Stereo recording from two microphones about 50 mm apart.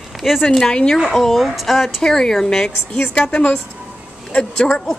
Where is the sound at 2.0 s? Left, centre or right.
Centre.